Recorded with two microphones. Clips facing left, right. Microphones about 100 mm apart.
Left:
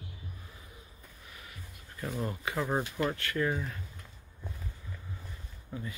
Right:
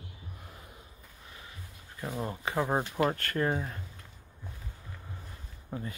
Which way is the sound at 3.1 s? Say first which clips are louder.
Right 1 dB; 45° right (ahead or behind).